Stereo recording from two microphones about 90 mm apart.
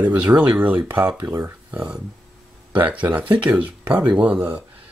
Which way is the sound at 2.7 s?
15° right (ahead or behind).